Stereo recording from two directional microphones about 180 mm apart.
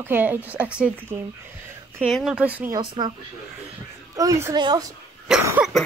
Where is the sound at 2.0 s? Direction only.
5° right (ahead or behind).